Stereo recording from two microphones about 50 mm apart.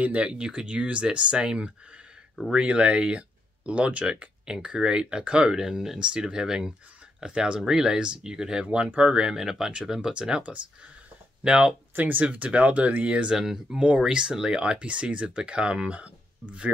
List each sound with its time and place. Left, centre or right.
0.0 s speech: right
8.6 s speech: right
11.9 s speech: right
12.3 s speech: right
13.4 s speech: centre; by 16.7 s right